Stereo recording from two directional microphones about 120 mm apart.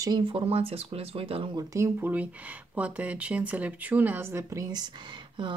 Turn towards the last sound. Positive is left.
turn(degrees=-40)  # may be behind; listen again after turning